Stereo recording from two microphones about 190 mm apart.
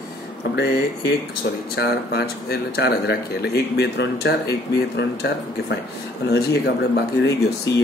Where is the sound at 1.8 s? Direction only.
60° left (ahead or behind).